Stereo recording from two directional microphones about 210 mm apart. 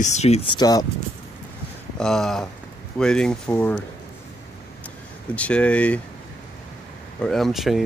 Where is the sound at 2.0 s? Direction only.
Centre (ahead or behind).